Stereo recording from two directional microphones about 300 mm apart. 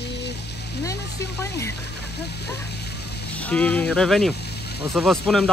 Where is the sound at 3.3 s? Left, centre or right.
Centre.